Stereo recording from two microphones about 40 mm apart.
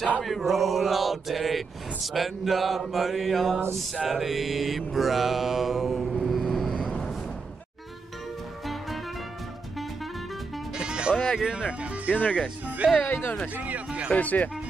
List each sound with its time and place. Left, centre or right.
0.2 s mantra: centre
6.2 s vehicle: centre
10.7 s music: right
11.3 s speech: centre
12.1 s speech: left
13.1 s speech: left
13.6 s speech: right
14.1 s speech: left